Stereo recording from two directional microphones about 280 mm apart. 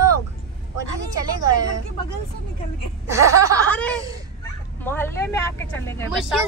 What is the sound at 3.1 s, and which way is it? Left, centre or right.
Speech, centre.